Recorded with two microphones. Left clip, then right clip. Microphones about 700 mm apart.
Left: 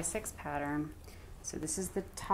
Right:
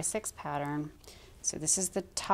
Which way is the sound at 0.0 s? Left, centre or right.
Right.